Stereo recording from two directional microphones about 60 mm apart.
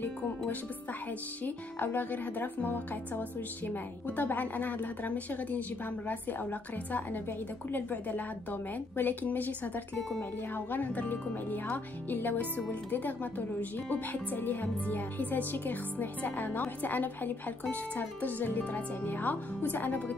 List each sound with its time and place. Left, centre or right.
1.4 s speech: left